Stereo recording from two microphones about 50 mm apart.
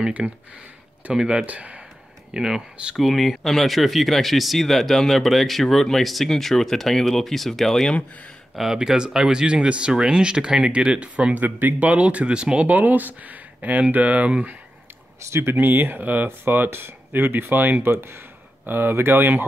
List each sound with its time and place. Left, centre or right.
0.0 s speech: centre
1.4 s speech: right
2.3 s speech: centre
3.0 s speech: centre
8.5 s speech: centre
11.3 s speech: right
12.6 s speech: right
15.5 s speech: right
17.9 s speech: right